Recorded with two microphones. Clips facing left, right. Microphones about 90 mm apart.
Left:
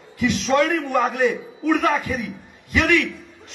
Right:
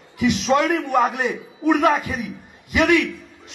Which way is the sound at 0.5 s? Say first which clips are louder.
Even; 10° right (ahead or behind).